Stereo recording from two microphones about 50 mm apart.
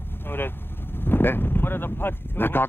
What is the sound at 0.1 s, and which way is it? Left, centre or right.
Speech, left.